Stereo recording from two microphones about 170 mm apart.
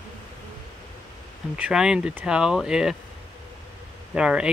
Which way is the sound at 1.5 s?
5° right (ahead or behind).